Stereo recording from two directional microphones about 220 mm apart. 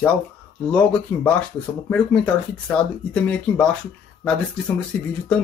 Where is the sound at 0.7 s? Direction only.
5° left (ahead or behind).